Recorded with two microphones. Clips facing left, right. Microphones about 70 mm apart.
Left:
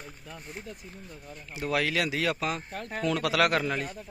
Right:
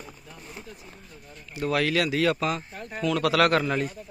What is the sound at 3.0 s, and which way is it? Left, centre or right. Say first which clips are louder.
Speech: right 3 dB; left.